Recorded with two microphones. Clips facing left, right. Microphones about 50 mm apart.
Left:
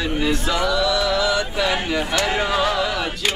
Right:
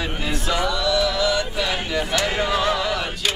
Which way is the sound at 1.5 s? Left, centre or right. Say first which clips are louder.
Left 3 dB; centre.